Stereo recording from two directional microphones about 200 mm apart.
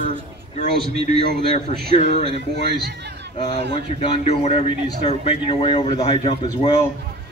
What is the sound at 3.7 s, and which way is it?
A man's voice, 25° left (ahead or behind).